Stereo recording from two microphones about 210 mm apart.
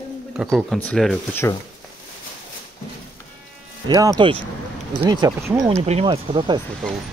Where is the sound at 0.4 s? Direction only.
Centre (ahead or behind).